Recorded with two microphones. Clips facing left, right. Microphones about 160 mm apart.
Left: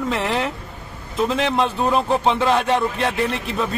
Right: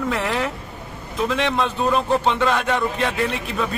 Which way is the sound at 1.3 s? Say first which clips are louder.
Left 1 dB; 35° left (ahead or behind).